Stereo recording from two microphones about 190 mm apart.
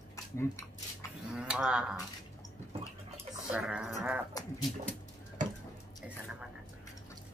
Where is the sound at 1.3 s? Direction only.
5° right (ahead or behind).